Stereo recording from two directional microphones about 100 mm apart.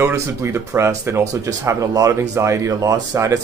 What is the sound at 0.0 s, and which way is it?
Speech, 30° right (ahead or behind).